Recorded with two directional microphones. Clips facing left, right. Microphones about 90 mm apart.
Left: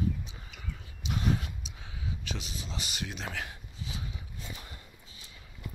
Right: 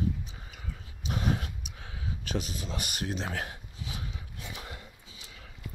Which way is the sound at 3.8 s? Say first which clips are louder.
Even; 65° right (ahead or behind).